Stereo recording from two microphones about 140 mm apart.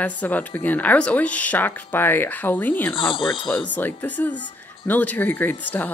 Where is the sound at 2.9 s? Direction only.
40° left (ahead or behind).